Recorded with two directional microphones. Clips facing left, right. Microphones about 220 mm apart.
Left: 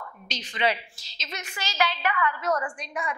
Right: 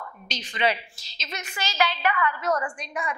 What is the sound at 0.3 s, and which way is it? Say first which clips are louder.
A woman's voice: right 1 dB; 15° right (ahead or behind).